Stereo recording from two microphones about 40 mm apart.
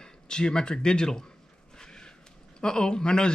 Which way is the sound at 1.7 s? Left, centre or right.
Centre.